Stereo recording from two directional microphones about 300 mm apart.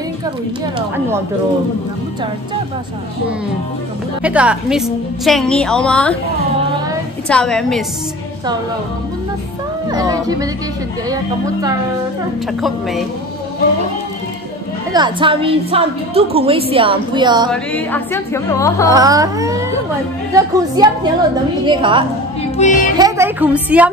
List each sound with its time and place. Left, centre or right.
0.7 s a woman's voice: centre
4.2 s a woman's voice: centre
7.2 s a woman's voice: centre
9.8 s a woman's voice: centre
12.6 s a woman's voice: centre
14.9 s a woman's voice: centre
17.5 s speech: centre
18.9 s a woman's voice: centre
22.6 s music: left
22.9 s a woman's voice: centre